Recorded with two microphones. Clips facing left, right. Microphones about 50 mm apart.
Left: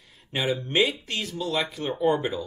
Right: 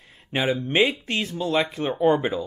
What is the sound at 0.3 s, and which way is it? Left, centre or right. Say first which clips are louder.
Speech: right 3 dB; right.